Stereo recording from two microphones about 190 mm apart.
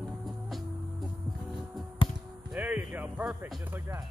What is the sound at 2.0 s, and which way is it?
Basketball bounce, 25° left (ahead or behind).